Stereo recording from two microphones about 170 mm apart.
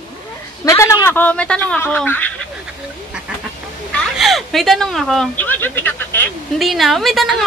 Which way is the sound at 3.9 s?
Centre (ahead or behind).